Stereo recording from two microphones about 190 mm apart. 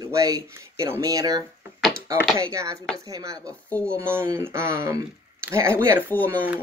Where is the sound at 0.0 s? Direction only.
15° right (ahead or behind).